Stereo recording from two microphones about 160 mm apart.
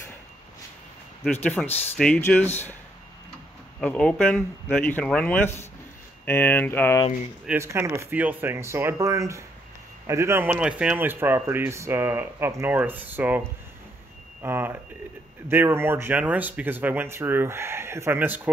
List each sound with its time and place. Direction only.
1.2 s speech: 10° left (ahead or behind)
3.8 s speech: 5° left (ahead or behind)
7.4 s speech: 15° right (ahead or behind)